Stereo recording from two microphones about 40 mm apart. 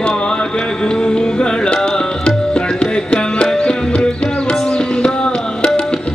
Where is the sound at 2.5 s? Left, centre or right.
Left.